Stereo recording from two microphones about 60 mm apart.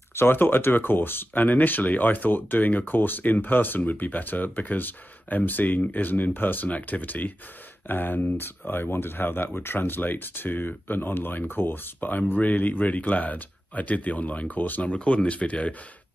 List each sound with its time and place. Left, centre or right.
0.1 s speech: left